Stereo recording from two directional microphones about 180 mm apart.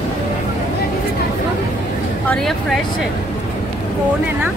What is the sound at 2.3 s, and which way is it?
Speech, centre (ahead or behind).